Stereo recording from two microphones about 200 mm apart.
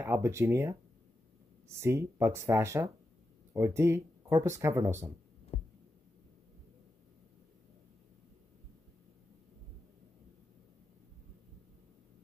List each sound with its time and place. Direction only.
0.0 s speech: 15° right (ahead or behind)
1.8 s speech: 15° right (ahead or behind)
5.5 s heart sounds: 25° left (ahead or behind)